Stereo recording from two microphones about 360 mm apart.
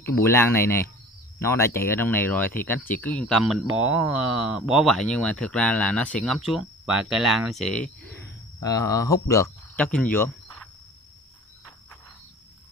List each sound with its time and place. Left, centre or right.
0.0 s speech: centre
3.6 s speech: right
3.9 s speech: centre